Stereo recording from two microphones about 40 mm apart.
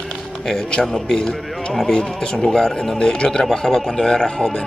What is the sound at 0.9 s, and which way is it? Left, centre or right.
Speech, centre.